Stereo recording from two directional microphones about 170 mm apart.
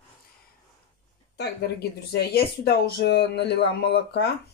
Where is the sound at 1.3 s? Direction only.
75° left (ahead or behind).